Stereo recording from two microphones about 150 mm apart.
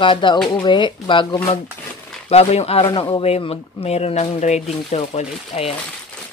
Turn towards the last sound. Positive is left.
turn(degrees=40)  # may be behind; listen again after turning